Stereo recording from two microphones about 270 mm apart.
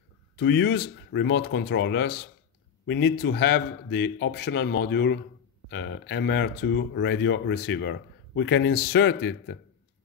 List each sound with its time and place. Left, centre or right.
0.4 s speech: left